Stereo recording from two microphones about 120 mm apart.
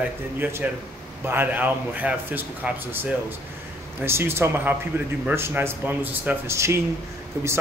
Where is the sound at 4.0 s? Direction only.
20° right (ahead or behind).